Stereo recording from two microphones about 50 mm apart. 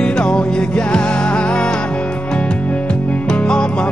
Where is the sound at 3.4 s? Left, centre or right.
Centre.